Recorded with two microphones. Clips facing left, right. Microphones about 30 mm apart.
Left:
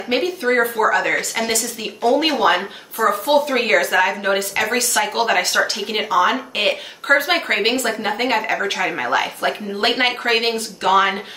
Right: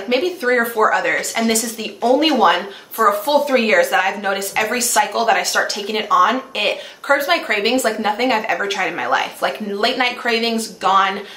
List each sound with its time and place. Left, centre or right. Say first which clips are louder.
0.2 s speech: right 1 dB; centre
7.7 s a woman's voice: right 3 dB; left
8.2 s speech: right 1 dB; centre